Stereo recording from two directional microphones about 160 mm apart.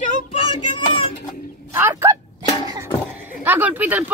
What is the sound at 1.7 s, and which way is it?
Speech, 15° right (ahead or behind).